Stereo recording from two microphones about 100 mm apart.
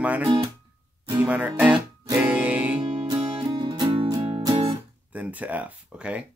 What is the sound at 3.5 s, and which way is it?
Music, 45° right (ahead or behind).